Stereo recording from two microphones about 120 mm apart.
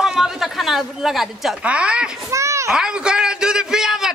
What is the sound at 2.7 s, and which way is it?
A man's voice, 5° right (ahead or behind).